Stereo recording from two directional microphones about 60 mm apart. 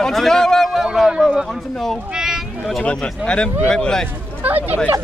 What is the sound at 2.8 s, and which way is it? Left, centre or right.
Speech, centre.